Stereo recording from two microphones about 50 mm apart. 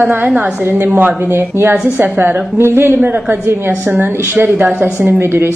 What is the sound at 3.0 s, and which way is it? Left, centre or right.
Speech, right.